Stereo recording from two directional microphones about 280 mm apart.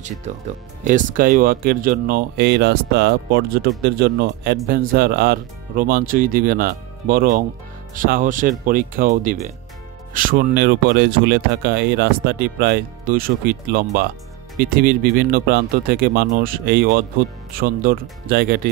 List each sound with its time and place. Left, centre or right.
0.8 s speech: right